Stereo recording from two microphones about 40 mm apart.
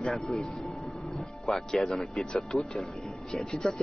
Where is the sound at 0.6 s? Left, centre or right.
Centre.